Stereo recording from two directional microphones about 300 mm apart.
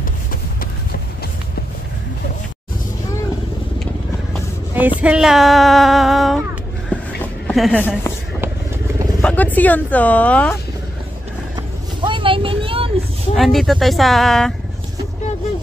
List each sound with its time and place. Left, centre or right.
3.8 s vehicle: centre
5.0 s female singing: centre
6.9 s a sound: centre
7.4 s female singing: centre
9.2 s female singing: centre
12.0 s vehicle: centre
13.3 s female singing: centre